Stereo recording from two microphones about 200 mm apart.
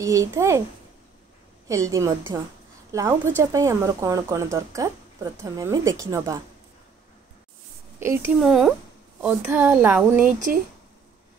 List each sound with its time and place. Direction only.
0.0 s speech: 15° right (ahead or behind)
1.7 s speech: 15° right (ahead or behind)
8.0 s speech: 15° right (ahead or behind)
8.5 s speech: centre (ahead or behind)
10.2 s speech: 40° right (ahead or behind)